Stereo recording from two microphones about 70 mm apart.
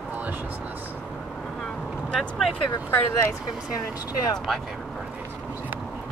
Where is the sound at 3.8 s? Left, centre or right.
Left.